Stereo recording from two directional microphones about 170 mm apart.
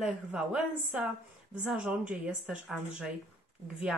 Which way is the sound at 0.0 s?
5° right (ahead or behind).